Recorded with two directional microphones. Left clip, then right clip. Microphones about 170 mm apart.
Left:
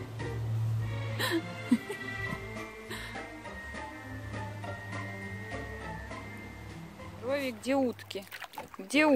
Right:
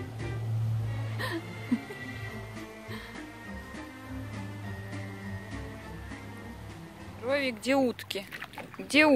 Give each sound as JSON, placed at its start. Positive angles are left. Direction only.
{"t": 1.1, "sound": "music", "side_deg": 55}
{"t": 7.2, "sound": "speech", "side_deg": -10}